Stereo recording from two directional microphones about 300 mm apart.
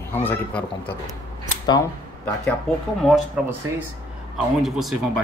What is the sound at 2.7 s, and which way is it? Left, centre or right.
Speech, centre.